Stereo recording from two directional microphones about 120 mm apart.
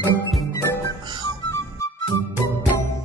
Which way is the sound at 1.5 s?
25° left (ahead or behind).